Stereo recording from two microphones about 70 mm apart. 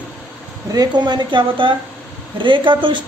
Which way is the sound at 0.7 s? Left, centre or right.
Right.